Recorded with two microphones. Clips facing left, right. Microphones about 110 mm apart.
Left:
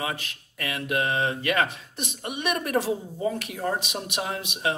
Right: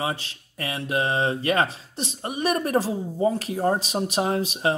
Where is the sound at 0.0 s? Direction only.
30° right (ahead or behind).